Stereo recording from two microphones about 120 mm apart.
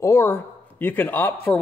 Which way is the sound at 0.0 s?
20° left (ahead or behind).